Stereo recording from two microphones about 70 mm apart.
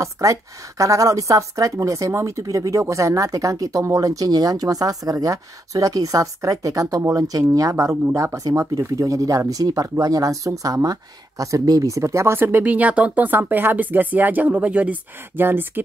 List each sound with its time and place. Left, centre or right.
0.0 s speech: right
12.4 s speech: right
12.6 s speech: centre